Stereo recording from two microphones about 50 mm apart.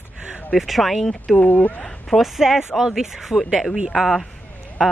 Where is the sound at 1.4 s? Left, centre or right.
Left.